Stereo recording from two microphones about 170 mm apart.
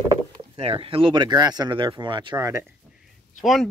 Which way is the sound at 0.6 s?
35° right (ahead or behind).